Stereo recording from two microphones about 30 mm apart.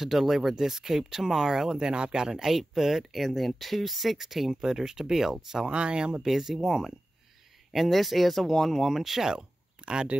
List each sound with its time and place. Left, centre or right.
0.0 s speech: centre
0.6 s speech: centre
1.9 s speech: right
5.7 s speech: right
6.2 s speech: centre
9.8 s speech: right